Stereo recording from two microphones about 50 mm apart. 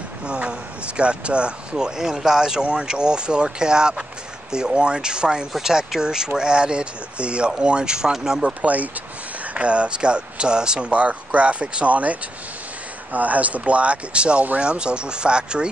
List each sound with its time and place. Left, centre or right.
0.3 s speech: right
8.6 s speech: right